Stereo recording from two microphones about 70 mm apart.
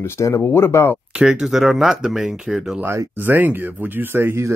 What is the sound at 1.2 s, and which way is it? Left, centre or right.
Speech, centre.